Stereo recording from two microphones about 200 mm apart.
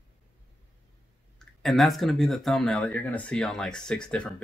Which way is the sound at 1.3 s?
Centre (ahead or behind).